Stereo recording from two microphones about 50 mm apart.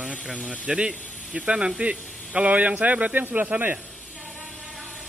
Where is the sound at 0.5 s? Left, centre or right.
Centre.